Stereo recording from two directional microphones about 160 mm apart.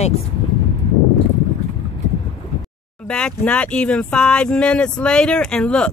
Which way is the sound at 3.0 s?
5° left (ahead or behind).